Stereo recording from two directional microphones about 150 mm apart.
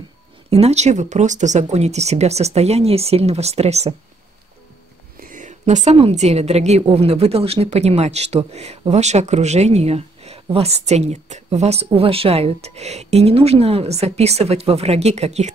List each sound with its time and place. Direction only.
0.5 s a woman's voice: 45° right (ahead or behind)
5.2 s a woman's voice: 60° right (ahead or behind)